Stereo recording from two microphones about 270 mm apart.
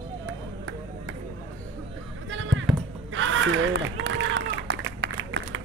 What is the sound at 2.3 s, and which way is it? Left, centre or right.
Basketball bounce, right.